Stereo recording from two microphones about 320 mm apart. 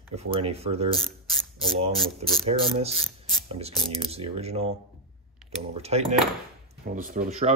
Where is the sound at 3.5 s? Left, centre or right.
Centre.